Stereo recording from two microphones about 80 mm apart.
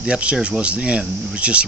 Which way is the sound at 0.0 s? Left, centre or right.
Centre.